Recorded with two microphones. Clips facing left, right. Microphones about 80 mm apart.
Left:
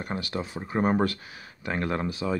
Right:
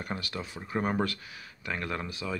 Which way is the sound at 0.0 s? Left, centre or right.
Left.